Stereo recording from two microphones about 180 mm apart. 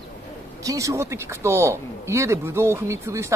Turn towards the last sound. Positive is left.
turn(degrees=-15)  # may be behind; listen again after turning